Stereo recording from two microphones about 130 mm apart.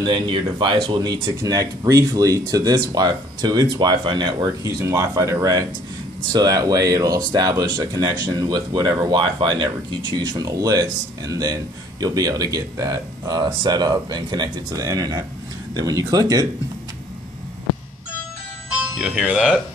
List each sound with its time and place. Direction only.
0.0 s speech: 35° right (ahead or behind)
4.8 s speech: 20° right (ahead or behind)
18.7 s music: 5° right (ahead or behind)